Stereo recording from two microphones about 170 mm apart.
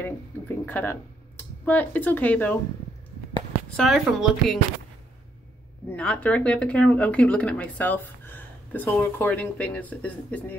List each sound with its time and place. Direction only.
0.0 s speech: 10° left (ahead or behind)
3.7 s speech: centre (ahead or behind)
5.9 s speech: 5° left (ahead or behind)